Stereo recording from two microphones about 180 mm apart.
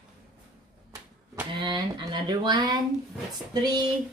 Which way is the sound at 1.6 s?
25° right (ahead or behind).